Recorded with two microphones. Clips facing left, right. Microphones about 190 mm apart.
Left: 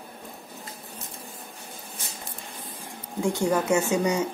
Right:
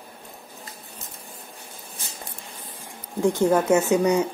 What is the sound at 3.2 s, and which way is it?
Speech, 20° right (ahead or behind).